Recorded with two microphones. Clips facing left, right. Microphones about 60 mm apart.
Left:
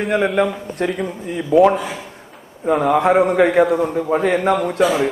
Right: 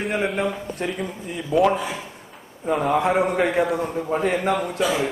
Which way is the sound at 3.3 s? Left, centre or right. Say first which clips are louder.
Left 7 dB; left.